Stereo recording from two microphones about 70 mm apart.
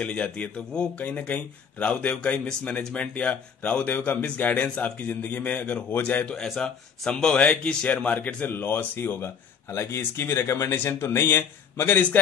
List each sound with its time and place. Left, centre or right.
0.0 s speech: centre
6.2 s speech: centre; by 12.2 s left